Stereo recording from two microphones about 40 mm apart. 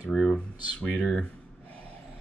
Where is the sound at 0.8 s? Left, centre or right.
Left.